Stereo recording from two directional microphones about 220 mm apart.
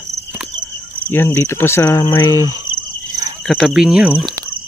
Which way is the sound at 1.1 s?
10° left (ahead or behind).